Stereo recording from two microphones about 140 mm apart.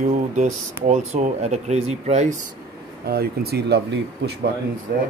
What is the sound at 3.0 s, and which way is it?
Speech, 90° right.